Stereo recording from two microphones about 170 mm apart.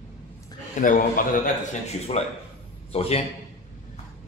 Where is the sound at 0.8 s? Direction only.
50° left (ahead or behind).